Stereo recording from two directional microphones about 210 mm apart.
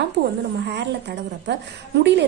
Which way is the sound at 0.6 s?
55° right (ahead or behind).